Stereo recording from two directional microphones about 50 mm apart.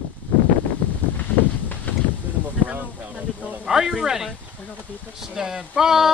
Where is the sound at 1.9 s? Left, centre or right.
Left.